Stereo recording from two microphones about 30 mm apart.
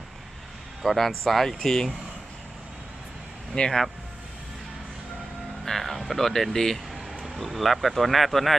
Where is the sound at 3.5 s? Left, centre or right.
Left.